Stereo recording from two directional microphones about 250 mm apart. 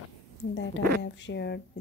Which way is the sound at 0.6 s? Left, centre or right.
Left.